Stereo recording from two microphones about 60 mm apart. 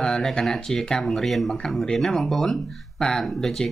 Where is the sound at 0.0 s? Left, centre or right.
Centre.